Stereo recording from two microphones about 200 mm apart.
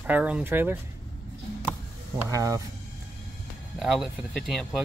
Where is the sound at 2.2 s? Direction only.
15° right (ahead or behind).